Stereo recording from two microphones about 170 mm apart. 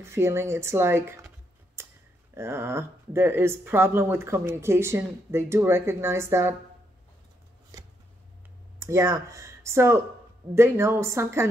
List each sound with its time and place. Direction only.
0.0 s speech: 15° right (ahead or behind)
1.8 s a sound: 15° right (ahead or behind)
2.3 s speech: 15° right (ahead or behind)
8.7 s speech: 20° right (ahead or behind)